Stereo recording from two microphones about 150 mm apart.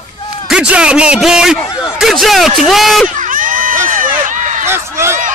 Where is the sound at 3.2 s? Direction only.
65° right (ahead or behind).